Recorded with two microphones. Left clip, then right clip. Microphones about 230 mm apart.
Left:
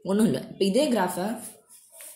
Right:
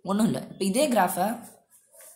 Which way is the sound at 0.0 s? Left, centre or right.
Centre.